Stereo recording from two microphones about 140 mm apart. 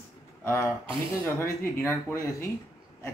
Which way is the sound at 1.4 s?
20° left (ahead or behind).